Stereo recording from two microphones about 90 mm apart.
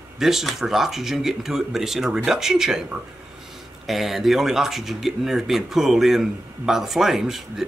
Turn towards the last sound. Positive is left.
turn(degrees=-5)  # may be behind; listen again after turning